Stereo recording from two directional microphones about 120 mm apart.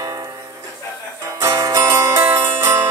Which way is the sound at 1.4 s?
25° right (ahead or behind).